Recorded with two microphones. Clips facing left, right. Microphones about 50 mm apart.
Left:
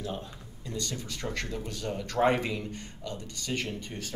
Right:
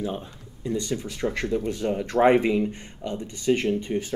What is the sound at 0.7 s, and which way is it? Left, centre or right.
Speech, right.